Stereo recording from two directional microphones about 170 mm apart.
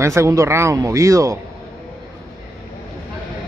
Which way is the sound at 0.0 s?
15° right (ahead or behind).